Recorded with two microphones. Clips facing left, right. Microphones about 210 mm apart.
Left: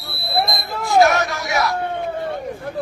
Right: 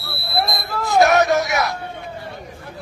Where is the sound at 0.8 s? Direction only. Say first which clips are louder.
Even; 20° right (ahead or behind).